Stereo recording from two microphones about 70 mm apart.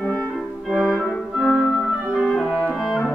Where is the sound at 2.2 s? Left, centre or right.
Centre.